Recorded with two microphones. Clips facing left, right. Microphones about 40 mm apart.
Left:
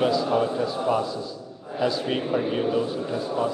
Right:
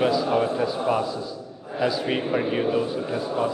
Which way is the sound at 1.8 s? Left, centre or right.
Centre.